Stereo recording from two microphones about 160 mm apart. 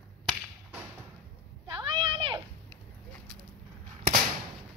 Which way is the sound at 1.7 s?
30° right (ahead or behind).